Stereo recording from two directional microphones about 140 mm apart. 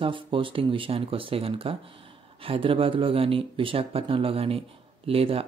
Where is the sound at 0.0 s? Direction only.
40° right (ahead or behind).